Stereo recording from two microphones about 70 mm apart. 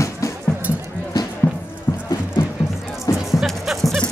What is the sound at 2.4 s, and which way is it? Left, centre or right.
Music, left.